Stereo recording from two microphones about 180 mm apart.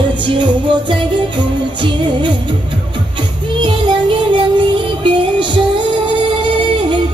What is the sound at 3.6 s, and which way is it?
Music, 30° right (ahead or behind).